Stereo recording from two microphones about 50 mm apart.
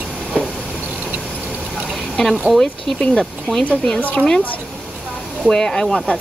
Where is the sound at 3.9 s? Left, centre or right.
Left.